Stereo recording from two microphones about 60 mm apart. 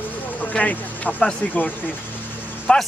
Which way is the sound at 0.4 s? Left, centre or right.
Left.